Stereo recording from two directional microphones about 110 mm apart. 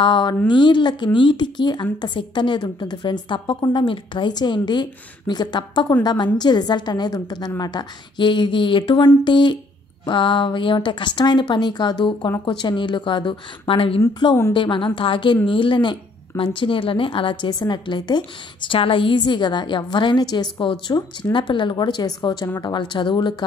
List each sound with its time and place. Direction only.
0.0 s speech: 45° left (ahead or behind); by 14.0 s 60° left (ahead or behind)
14.5 s speech: 50° left (ahead or behind)